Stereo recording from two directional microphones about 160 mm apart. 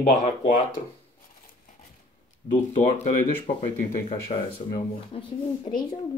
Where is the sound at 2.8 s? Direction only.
45° left (ahead or behind).